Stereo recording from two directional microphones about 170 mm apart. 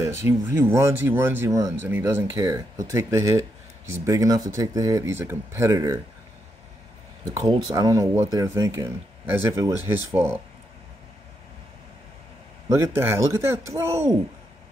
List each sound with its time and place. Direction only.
0.2 s speech: 15° right (ahead or behind)
7.3 s speech: 25° right (ahead or behind)
12.6 s speech: 15° right (ahead or behind)